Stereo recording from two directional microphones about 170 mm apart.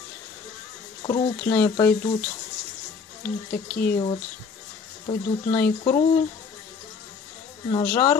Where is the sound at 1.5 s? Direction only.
10° left (ahead or behind).